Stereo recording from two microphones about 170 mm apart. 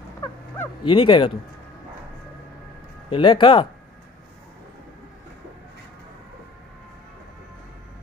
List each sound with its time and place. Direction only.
0.8 s speech: 30° left (ahead or behind)
3.1 s speech: 30° left (ahead or behind)